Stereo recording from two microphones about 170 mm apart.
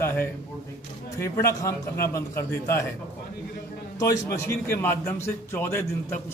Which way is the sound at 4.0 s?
15° left (ahead or behind).